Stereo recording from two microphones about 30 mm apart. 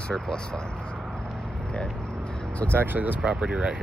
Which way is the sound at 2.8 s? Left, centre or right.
Right.